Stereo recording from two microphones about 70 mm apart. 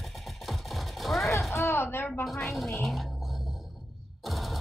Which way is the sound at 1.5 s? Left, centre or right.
Left.